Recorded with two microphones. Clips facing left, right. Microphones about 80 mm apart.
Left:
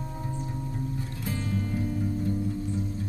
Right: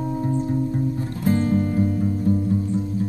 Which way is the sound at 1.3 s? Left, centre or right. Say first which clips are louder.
Right 13 dB; right.